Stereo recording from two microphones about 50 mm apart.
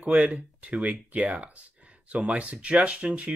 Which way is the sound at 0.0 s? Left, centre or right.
Right.